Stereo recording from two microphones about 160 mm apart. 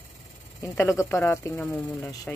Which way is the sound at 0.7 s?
15° left (ahead or behind).